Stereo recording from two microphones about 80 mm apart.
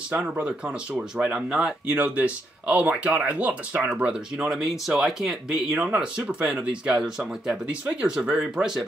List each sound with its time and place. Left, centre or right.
0.1 s speech: centre
4.5 s speech: centre
5.9 s speech: centre